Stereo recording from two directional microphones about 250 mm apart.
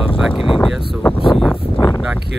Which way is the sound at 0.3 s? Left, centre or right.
Left.